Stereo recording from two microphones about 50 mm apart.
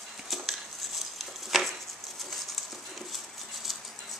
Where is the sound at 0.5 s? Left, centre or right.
Centre.